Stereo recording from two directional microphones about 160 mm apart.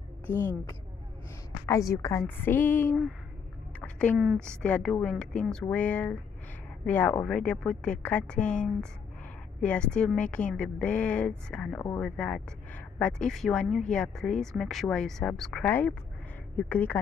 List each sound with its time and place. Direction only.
0.3 s a woman's voice: 15° left (ahead or behind)
3.8 s a sound: 5° left (ahead or behind)
4.2 s a woman's voice: centre (ahead or behind)